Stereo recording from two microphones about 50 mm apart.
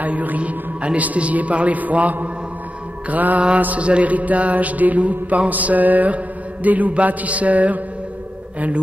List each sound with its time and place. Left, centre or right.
0.0 s a man's voice: right
3.1 s mantra: right